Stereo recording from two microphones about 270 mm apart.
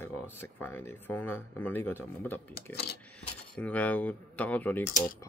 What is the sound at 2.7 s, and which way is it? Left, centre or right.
Coin, left.